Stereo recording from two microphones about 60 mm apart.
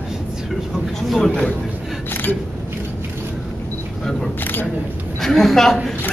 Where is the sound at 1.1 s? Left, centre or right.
Centre.